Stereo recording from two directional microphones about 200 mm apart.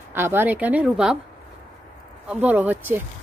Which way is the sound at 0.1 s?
10° right (ahead or behind).